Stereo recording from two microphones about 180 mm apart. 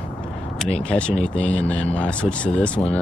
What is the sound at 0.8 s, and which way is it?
Speech, 5° left (ahead or behind).